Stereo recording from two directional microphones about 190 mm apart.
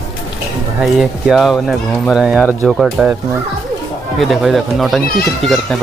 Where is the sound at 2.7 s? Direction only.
Centre (ahead or behind).